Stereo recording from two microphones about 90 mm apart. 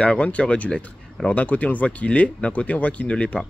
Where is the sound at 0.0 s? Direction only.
10° left (ahead or behind).